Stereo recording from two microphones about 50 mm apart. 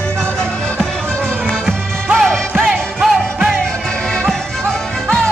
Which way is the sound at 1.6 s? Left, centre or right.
Centre.